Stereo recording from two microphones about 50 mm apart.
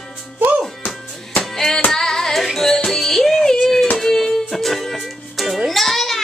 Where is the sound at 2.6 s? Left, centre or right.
Centre.